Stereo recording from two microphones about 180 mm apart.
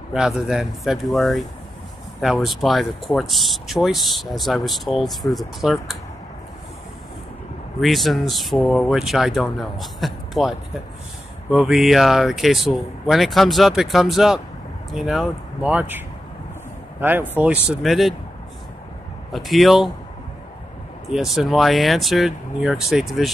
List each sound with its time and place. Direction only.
0.1 s speech: centre (ahead or behind)
7.8 s speech: centre (ahead or behind)
11.5 s speech: centre (ahead or behind)
17.0 s speech: 10° right (ahead or behind)
19.3 s speech: centre (ahead or behind)
21.1 s speech: centre (ahead or behind)